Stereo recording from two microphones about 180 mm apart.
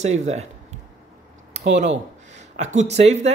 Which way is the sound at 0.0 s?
40° right (ahead or behind).